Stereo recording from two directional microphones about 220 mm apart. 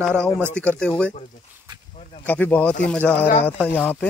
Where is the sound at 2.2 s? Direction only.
5° left (ahead or behind).